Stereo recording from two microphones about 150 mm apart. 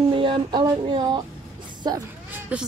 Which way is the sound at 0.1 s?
35° right (ahead or behind).